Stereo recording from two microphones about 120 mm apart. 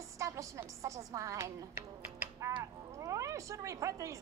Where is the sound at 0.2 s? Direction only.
25° right (ahead or behind).